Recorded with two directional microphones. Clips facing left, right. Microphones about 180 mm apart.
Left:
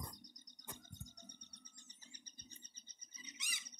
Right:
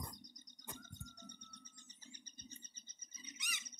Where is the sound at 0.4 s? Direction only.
35° left (ahead or behind).